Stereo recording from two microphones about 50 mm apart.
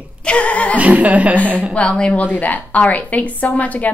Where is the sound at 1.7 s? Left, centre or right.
Left.